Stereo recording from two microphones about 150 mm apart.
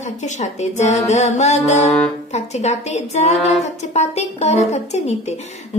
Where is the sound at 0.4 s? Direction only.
50° left (ahead or behind).